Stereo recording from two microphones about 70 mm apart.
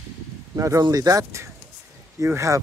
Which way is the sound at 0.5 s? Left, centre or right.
Right.